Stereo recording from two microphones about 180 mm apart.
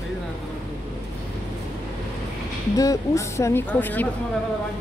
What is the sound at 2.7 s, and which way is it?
Speech, 20° left (ahead or behind).